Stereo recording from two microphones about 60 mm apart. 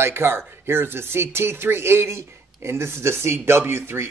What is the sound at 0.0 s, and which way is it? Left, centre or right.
Speech, right.